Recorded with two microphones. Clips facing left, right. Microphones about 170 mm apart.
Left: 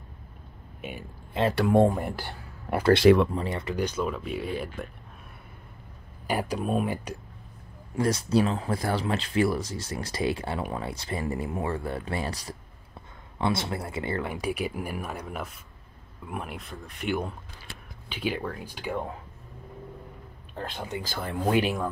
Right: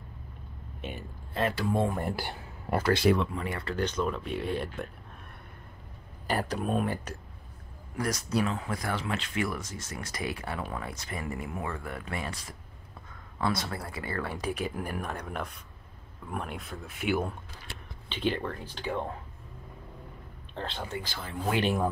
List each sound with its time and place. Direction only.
0.7 s speech: 10° left (ahead or behind)
1.5 s speech: 65° left (ahead or behind)
2.9 s speech: 75° left (ahead or behind)
3.3 s speech: 30° left (ahead or behind)
3.6 s speech: 10° left (ahead or behind)
6.2 s speech: 10° left (ahead or behind)
7.9 s speech: 25° left (ahead or behind)
13.4 s speech: 25° left (ahead or behind); by 17.4 s 5° right (ahead or behind)
18.0 s speech: 10° left (ahead or behind)
20.5 s speech: 10° left (ahead or behind)
21.1 s speech: 55° left (ahead or behind)